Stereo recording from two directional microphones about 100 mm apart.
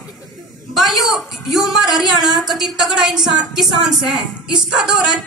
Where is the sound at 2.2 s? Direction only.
45° right (ahead or behind).